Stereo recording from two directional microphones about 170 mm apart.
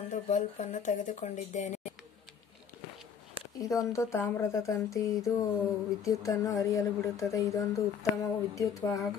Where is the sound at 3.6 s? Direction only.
20° left (ahead or behind).